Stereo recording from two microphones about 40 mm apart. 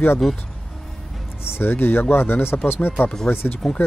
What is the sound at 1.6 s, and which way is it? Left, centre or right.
Speech, left.